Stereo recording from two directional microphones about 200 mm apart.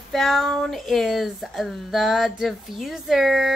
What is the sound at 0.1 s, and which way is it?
Speech, centre (ahead or behind).